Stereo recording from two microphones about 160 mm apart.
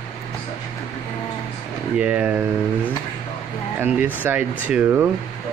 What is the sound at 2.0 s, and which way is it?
Speech, 5° right (ahead or behind).